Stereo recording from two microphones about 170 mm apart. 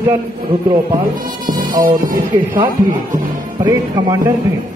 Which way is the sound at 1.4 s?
55° right (ahead or behind).